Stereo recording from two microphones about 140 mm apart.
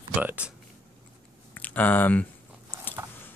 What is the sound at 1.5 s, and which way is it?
Speech, 10° left (ahead or behind).